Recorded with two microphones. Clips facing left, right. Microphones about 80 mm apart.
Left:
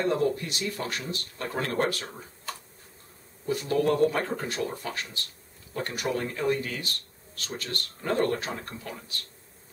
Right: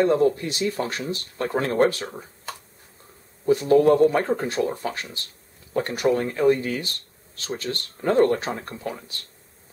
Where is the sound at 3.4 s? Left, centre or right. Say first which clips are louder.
Right 9 dB; right.